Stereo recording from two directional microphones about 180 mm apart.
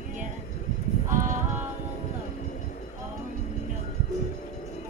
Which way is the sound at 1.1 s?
45° right (ahead or behind).